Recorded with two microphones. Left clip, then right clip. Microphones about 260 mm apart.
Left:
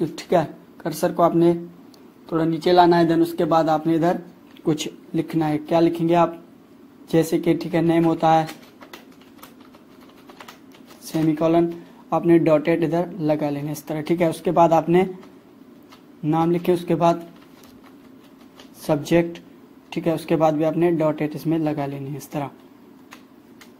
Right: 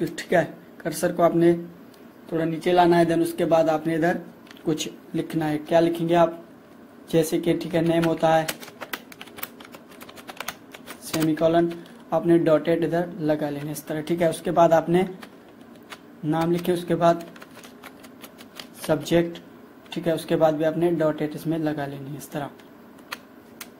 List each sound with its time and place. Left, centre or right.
0.1 s speech: centre
11.2 s speech: centre
16.3 s speech: centre
18.9 s speech: centre